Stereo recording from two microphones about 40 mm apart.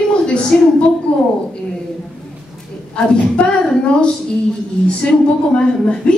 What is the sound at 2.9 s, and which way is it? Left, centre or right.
A woman's voice, left.